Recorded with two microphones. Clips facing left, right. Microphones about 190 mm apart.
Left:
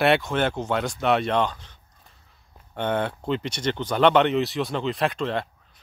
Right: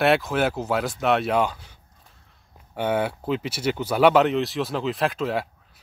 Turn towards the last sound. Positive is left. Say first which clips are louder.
# right 1 dB
turn(degrees=-5)  # may be behind; listen again after turning